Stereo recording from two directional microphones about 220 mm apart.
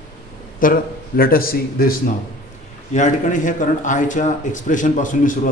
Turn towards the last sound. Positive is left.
turn(degrees=35)  # may be behind; listen again after turning